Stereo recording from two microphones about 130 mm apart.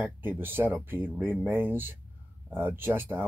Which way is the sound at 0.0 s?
15° right (ahead or behind).